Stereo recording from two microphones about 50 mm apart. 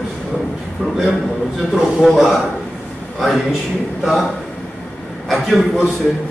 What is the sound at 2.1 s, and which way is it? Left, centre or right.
Speech, centre.